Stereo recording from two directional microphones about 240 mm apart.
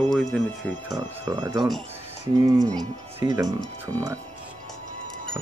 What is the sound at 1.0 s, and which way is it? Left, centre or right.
Speech, centre.